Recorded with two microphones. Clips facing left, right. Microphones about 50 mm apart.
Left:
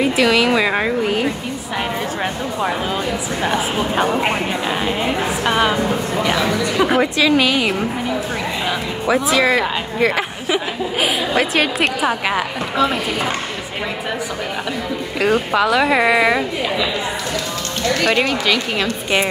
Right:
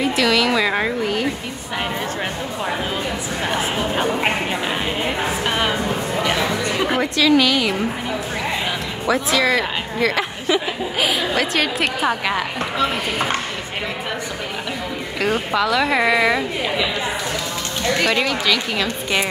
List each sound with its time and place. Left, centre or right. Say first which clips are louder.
0.0 s a woman's voice: left 3 dB; centre
3.9 s speech: left 5 dB; centre
5.4 s speech: left 6 dB; centre
7.0 s speech: left 1 dB; centre
9.0 s speech: left 2 dB; centre
15.1 s speech: left 4 dB; centre
18.0 s speech: left 3 dB; centre